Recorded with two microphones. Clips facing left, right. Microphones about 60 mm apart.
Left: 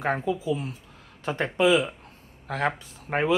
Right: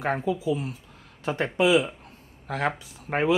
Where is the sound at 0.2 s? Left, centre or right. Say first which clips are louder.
Right 1 dB; centre.